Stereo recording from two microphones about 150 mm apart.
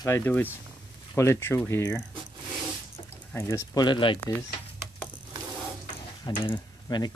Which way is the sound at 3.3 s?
20° left (ahead or behind).